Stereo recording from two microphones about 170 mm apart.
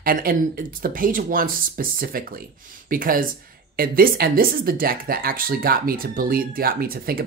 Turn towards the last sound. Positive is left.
turn(degrees=-60)  # may be behind; listen again after turning